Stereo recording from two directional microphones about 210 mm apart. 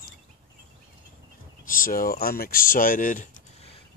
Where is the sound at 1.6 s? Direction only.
40° left (ahead or behind).